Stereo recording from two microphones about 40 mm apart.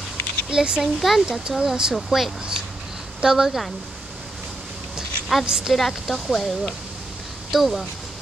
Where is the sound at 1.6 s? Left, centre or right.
Centre.